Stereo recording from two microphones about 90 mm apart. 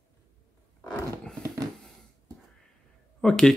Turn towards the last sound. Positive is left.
turn(degrees=5)  # may be behind; listen again after turning